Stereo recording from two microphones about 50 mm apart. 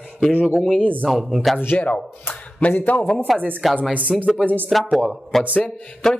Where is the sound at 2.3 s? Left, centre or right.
Left.